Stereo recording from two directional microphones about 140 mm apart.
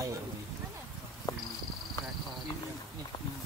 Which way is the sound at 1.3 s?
25° left (ahead or behind).